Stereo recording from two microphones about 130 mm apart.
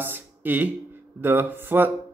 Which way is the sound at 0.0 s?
15° right (ahead or behind).